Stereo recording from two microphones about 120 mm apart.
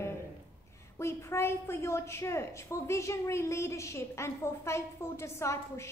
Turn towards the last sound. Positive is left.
turn(degrees=25)  # may be behind; listen again after turning